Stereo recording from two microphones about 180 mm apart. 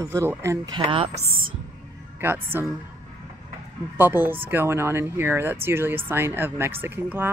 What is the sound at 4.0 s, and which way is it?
A woman's voice, 10° right (ahead or behind).